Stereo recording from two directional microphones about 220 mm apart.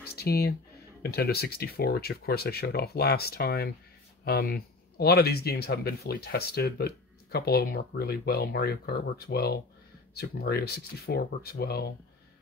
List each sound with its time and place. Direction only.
0.1 s speech: 45° left (ahead or behind)